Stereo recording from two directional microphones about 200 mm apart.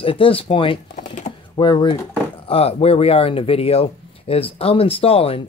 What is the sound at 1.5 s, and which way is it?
Speech, 25° left (ahead or behind).